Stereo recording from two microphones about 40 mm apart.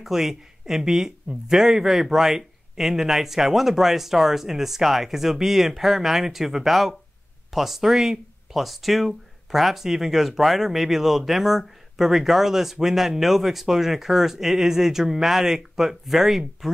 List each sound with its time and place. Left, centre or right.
0.0 s speech: centre